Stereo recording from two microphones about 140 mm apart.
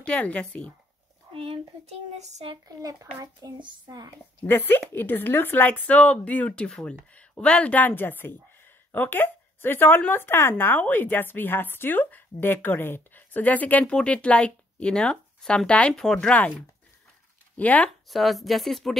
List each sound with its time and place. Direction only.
0.0 s speech: 10° left (ahead or behind)
1.3 s speech: 40° right (ahead or behind)
2.5 s a child's voice: 25° right (ahead or behind)
4.5 s speech: 15° left (ahead or behind)
17.6 s speech: 10° left (ahead or behind)
18.1 s speech: centre (ahead or behind)